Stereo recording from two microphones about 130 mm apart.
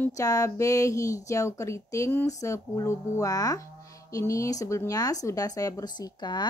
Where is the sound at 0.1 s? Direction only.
25° left (ahead or behind).